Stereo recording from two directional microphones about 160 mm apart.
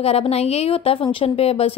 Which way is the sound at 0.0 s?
40° left (ahead or behind).